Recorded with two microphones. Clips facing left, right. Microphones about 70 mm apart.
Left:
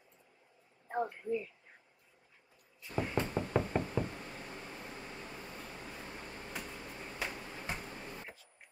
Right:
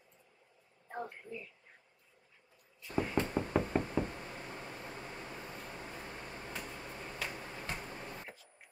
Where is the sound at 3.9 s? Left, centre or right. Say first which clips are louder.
Right 1 dB; right.